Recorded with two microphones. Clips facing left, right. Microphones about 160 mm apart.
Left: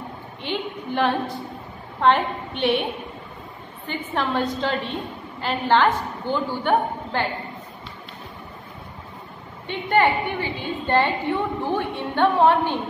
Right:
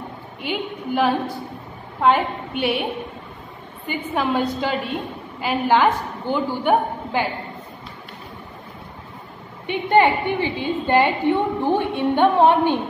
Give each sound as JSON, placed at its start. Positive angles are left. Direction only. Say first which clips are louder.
{"t": 0.4, "sound": "a woman's voice", "louder": "right 2 dB", "side_deg": -5}
{"t": 3.8, "sound": "a woman's voice", "louder": "right 3 dB", "side_deg": -10}
{"t": 9.7, "sound": "a woman's voice", "louder": "right 3 dB", "side_deg": -20}